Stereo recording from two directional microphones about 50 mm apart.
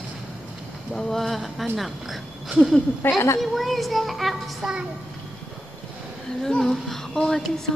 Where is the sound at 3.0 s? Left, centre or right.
Left.